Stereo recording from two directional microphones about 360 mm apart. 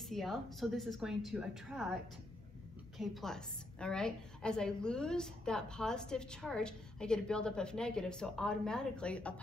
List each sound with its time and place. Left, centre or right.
0.1 s a woman's voice: centre
3.0 s a woman's voice: centre